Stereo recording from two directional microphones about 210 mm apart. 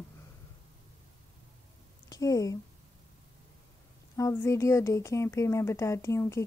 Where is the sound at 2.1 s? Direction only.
15° left (ahead or behind).